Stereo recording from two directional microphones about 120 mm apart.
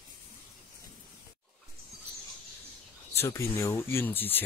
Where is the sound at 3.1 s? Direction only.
25° left (ahead or behind).